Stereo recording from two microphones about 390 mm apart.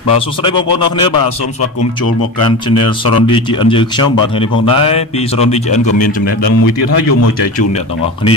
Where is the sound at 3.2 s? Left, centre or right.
Centre.